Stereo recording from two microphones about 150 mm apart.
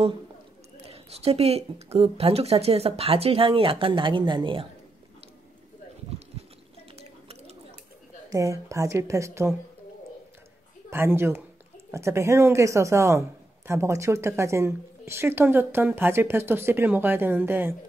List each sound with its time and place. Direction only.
0.8 s speech: 40° right (ahead or behind)
8.3 s speech: 20° right (ahead or behind)
10.9 s a woman's voice: 15° right (ahead or behind)